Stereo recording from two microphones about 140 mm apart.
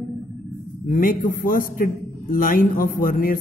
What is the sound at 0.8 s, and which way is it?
A man's voice, 85° left.